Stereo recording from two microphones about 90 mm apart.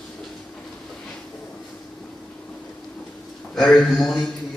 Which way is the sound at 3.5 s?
5° left (ahead or behind).